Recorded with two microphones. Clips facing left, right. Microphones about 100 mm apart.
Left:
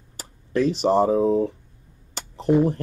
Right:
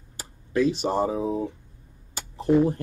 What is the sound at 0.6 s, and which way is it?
Speech, 40° left (ahead or behind).